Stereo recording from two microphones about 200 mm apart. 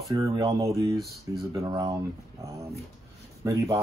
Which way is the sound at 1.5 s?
15° right (ahead or behind).